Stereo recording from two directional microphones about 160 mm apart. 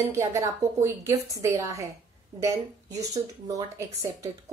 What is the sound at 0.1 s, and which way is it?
Speech, 20° right (ahead or behind).